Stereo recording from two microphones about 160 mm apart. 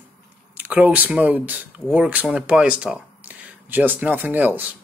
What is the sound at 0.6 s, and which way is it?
Speech, 10° right (ahead or behind).